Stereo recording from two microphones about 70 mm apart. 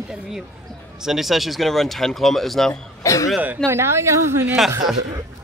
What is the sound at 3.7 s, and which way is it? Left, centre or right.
Speech, right.